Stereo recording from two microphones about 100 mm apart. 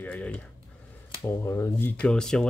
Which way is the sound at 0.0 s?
20° left (ahead or behind).